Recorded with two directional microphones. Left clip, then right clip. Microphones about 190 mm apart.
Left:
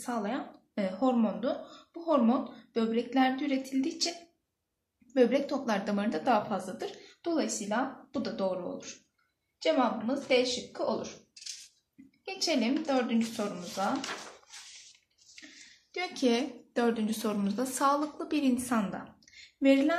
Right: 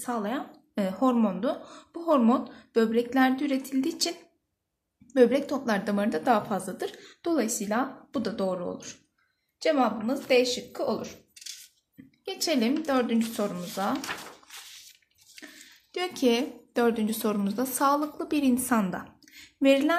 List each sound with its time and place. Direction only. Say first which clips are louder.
0.0 s a woman's voice: right 3 dB; 40° right (ahead or behind)
5.1 s a woman's voice: right 4 dB; 40° right (ahead or behind)
12.3 s a woman's voice: right 3 dB; 50° right (ahead or behind)
15.9 s a woman's voice: right 4 dB; 40° right (ahead or behind)